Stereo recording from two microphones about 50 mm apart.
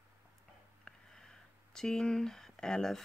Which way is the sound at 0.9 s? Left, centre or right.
Centre.